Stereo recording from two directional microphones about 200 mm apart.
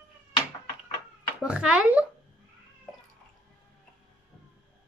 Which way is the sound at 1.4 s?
5° right (ahead or behind).